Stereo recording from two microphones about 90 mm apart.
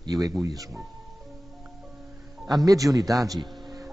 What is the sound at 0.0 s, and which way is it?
Speech, 45° right (ahead or behind).